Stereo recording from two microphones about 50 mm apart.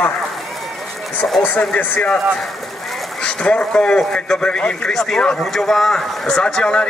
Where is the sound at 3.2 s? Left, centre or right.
Left.